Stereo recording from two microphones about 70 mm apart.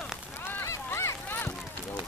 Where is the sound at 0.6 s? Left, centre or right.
Left.